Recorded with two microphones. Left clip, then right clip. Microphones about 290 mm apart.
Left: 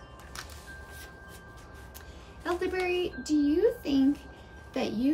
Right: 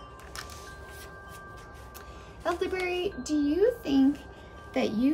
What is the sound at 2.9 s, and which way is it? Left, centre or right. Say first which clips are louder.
A child's voice: left 1 dB; centre.